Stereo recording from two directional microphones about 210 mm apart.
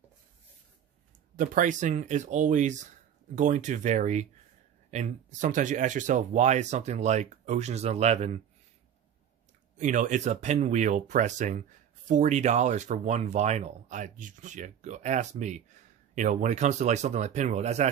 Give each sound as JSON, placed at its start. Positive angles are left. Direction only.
{"t": 1.4, "sound": "speech", "side_deg": -40}
{"t": 9.8, "sound": "speech", "side_deg": -35}